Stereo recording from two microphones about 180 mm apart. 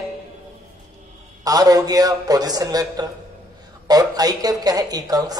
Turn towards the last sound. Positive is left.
turn(degrees=-20)  # may be behind; listen again after turning